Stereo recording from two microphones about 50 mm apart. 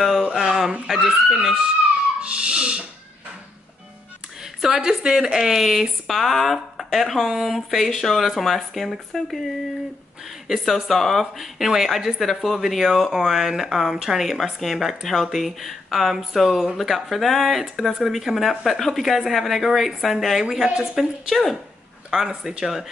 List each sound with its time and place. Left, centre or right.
0.2 s a sound: centre
0.8 s speech: centre
2.2 s owl: centre
4.6 s speech: centre
10.5 s speech: centre